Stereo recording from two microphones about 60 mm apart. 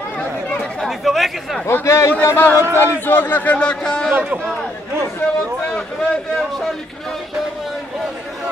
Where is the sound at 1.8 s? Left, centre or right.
Left.